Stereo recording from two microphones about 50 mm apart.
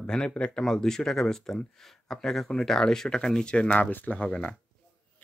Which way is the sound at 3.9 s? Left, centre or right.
Left.